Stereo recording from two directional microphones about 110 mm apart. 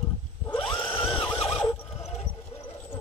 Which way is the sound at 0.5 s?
45° left (ahead or behind).